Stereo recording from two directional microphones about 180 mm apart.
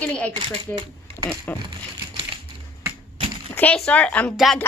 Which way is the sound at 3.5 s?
5° left (ahead or behind).